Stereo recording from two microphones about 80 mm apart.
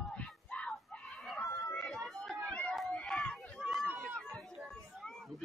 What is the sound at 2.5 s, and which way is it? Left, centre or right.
Chatter, centre.